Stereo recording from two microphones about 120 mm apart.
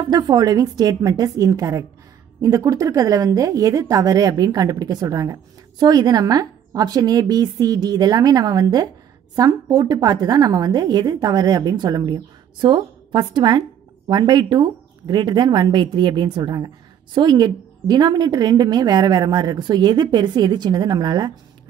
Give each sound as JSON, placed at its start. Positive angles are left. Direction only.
{"t": 0.1, "sound": "a woman's voice", "side_deg": -35}